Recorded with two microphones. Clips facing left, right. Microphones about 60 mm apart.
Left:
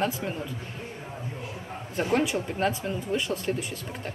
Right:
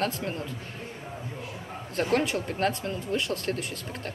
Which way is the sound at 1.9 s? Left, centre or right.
Centre.